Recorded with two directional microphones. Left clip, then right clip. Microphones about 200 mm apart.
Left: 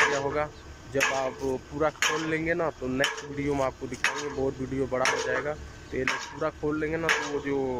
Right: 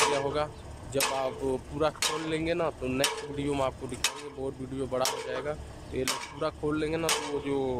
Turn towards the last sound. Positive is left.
turn(degrees=-5)  # may be behind; listen again after turning